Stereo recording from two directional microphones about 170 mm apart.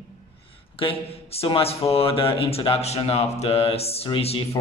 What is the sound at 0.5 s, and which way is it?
Speech, 30° left (ahead or behind).